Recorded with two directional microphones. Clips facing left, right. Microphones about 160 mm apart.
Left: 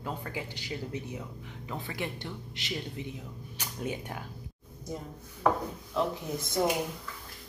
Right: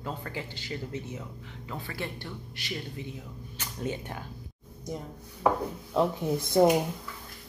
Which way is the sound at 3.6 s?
10° left (ahead or behind).